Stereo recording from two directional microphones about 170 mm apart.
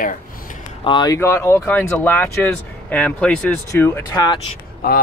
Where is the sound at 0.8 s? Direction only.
25° left (ahead or behind).